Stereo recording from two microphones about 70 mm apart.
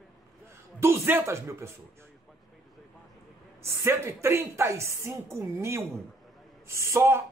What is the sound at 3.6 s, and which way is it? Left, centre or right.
A woman's voice, right.